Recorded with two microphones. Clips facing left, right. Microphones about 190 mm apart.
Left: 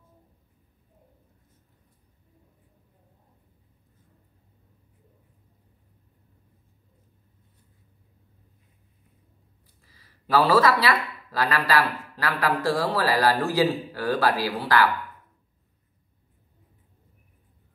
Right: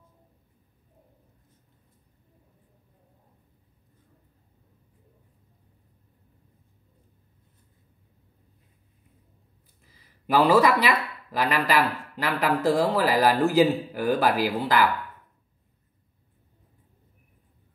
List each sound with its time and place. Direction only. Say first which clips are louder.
9.9 s speech: even; 20° right (ahead or behind)